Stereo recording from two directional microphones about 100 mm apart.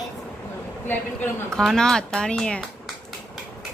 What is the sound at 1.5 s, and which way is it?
Speech, 5° left (ahead or behind).